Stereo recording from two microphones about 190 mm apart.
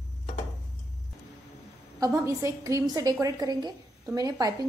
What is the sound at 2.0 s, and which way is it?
A woman's voice, 15° right (ahead or behind).